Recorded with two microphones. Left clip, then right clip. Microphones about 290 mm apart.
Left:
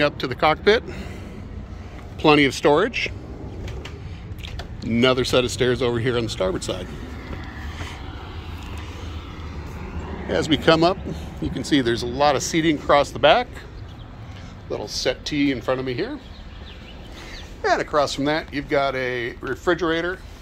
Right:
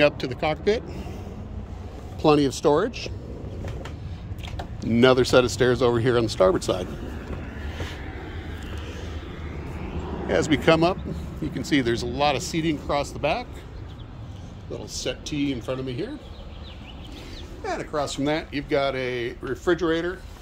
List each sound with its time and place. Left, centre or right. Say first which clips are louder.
0.0 s speech: left 2 dB; centre
2.6 s speech: left 3 dB; centre
4.8 s speech: right 1 dB; centre
10.2 s speech: left 2 dB; centre
14.7 s speech: left 7 dB; centre
17.6 s speech: left 8 dB; centre